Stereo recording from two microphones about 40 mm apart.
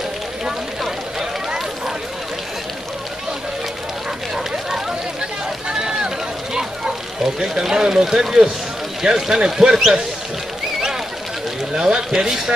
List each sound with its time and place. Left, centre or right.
4.4 s fire: centre
5.7 s run: centre
7.5 s speech: centre
11.7 s speech: centre